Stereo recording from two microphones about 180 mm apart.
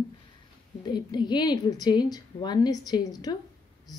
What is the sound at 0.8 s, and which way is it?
A woman's voice, 25° left (ahead or behind).